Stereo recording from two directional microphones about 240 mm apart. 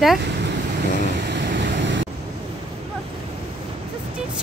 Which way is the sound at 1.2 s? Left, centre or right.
Right.